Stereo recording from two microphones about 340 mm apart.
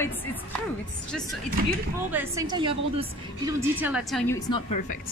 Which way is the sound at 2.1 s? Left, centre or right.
Centre.